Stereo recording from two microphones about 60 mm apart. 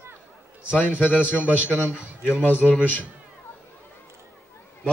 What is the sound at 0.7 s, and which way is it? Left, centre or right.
A man's voice, left.